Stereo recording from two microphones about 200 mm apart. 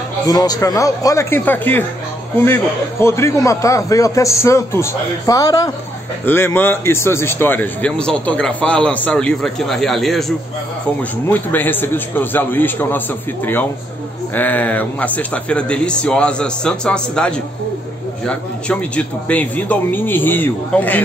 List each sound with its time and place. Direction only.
0.3 s speech: 20° left (ahead or behind); by 10.2 s centre (ahead or behind)
11.2 s speech: 10° left (ahead or behind)
14.3 s speech: 10° left (ahead or behind)